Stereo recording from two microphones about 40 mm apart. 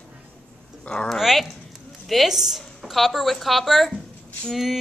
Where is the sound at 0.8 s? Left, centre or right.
Left.